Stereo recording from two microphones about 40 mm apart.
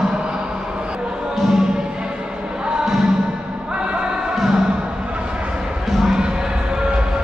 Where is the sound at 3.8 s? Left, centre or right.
Right.